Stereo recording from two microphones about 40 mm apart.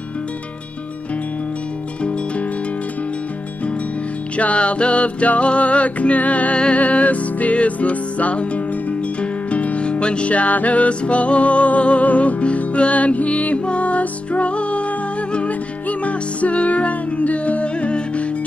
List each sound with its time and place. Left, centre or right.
4.4 s music: left